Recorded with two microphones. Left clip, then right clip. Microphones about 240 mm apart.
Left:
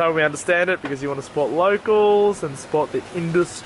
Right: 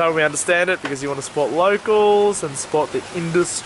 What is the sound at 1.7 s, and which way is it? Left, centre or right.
Speech, centre.